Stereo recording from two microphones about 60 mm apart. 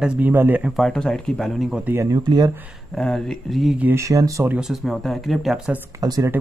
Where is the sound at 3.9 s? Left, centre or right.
Right.